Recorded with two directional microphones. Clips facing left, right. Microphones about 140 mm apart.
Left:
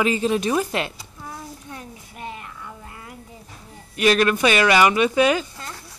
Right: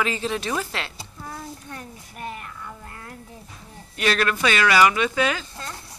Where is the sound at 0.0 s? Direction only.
15° left (ahead or behind).